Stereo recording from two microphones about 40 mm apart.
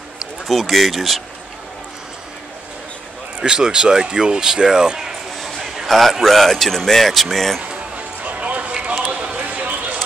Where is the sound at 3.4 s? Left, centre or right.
Centre.